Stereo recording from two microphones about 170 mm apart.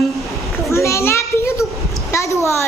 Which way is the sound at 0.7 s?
15° left (ahead or behind).